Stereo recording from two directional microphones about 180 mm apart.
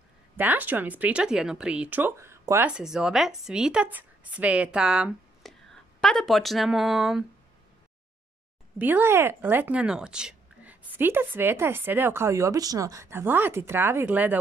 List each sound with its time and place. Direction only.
0.4 s speech: 10° right (ahead or behind)
8.7 s a woman's voice: 10° right (ahead or behind)